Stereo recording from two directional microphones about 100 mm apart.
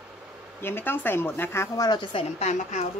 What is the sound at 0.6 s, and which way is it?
A woman's voice, 20° left (ahead or behind).